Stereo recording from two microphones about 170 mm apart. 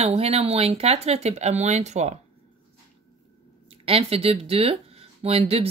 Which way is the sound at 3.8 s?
35° right (ahead or behind).